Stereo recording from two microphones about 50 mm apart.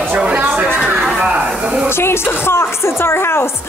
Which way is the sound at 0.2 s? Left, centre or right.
Right.